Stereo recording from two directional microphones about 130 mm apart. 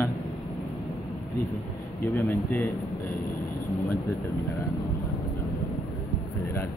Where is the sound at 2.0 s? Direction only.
15° left (ahead or behind).